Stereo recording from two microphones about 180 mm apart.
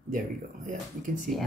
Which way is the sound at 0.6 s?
45° right (ahead or behind).